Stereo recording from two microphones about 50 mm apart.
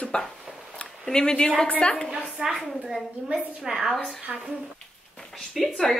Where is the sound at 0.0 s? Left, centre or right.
Centre.